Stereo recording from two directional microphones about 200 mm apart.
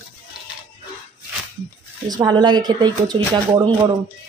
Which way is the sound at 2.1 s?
20° right (ahead or behind).